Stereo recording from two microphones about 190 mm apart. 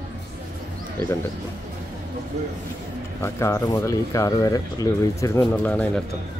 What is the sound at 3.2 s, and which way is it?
Speech, 15° left (ahead or behind).